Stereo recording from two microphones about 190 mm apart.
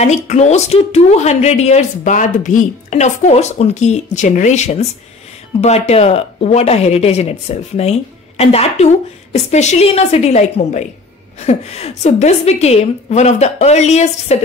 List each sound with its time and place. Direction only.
0.0 s a woman's voice: 35° left (ahead or behind)